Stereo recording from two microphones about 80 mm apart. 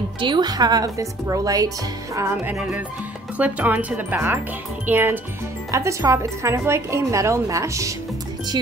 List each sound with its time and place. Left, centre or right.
0.2 s speech: right
3.3 s speech: centre
5.7 s speech: right